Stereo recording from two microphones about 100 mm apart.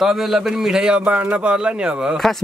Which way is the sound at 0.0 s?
Centre (ahead or behind).